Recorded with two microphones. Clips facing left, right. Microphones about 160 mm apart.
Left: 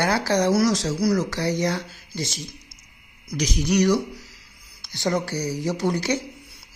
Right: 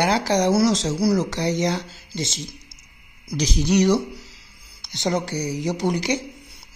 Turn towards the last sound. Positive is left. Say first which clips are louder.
# right 1 dB
turn(degrees=-15)  # may be behind; listen again after turning